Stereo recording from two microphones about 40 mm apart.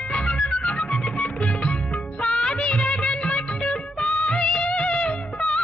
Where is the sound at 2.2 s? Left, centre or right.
Left.